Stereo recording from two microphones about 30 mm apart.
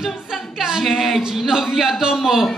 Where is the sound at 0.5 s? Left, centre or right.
Centre.